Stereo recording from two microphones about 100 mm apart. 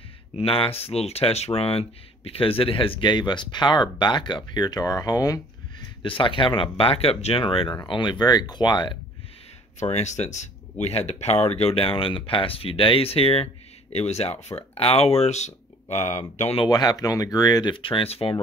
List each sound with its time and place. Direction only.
0.4 s speech: 70° left (ahead or behind); by 5.4 s 35° left (ahead or behind)
6.0 s speech: 60° left (ahead or behind)
7.6 s speech: 25° left (ahead or behind)
7.9 s speech: 50° left (ahead or behind)
9.8 s speech: 90° left; by 13.5 s 75° left (ahead or behind)
13.9 s speech: 90° left
16.6 s speech: 45° left (ahead or behind)
17.7 s speech: 60° left (ahead or behind)